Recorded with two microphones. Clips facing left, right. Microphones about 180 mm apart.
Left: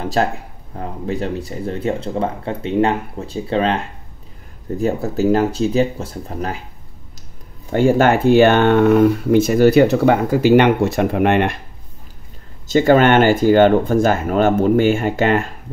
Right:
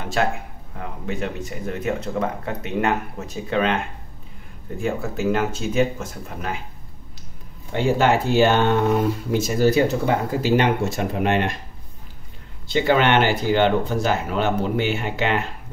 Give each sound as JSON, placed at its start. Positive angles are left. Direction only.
{"t": 0.0, "sound": "a sound", "side_deg": 35}
{"t": 0.7, "sound": "speech", "side_deg": 35}
{"t": 7.7, "sound": "speech", "side_deg": 50}
{"t": 12.6, "sound": "speech", "side_deg": 45}